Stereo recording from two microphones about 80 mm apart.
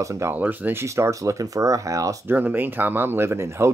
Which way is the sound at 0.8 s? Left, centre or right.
Right.